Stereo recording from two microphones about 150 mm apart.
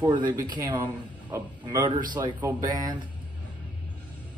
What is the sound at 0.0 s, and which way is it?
Speech, 30° right (ahead or behind).